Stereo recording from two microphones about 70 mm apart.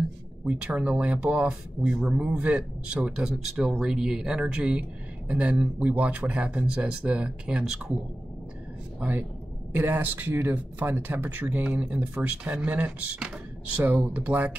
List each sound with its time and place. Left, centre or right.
0.5 s speech: centre
9.7 s speech: right